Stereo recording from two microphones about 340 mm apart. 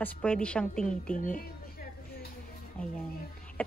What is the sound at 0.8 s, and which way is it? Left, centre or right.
Speech, left.